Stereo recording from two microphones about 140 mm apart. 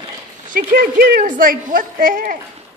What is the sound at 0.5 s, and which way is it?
Speech, 85° right.